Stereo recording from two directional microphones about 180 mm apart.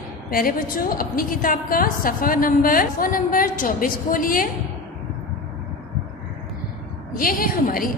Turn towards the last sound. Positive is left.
turn(degrees=50)  # may be behind; listen again after turning